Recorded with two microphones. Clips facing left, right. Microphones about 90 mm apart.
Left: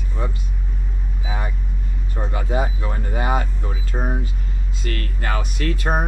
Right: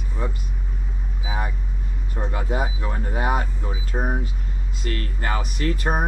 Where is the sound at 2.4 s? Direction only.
Centre (ahead or behind).